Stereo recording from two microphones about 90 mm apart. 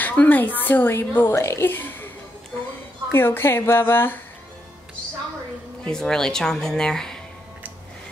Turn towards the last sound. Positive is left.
turn(degrees=5)  # may be behind; listen again after turning